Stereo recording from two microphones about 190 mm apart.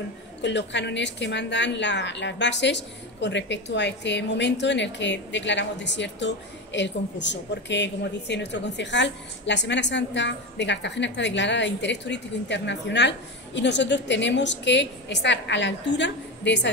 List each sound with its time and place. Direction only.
0.4 s a woman's voice: 70° left (ahead or behind)